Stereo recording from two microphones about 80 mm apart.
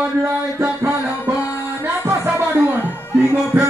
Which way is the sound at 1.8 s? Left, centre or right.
Right.